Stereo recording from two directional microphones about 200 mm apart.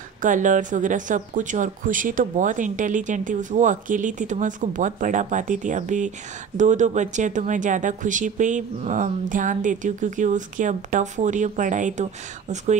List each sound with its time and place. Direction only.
0.2 s speech: 40° right (ahead or behind)